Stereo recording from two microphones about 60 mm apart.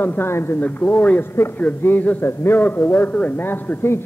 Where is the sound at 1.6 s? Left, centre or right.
Left.